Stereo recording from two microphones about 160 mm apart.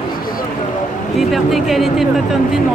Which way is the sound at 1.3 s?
Centre (ahead or behind).